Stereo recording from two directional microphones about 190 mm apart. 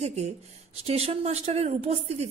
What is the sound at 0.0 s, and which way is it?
A man's voice, 35° right (ahead or behind).